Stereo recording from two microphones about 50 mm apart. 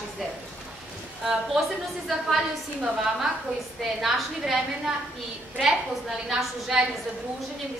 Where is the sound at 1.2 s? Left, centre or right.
Centre.